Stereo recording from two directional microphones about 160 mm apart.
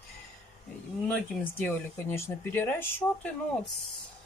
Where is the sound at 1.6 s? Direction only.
10° left (ahead or behind).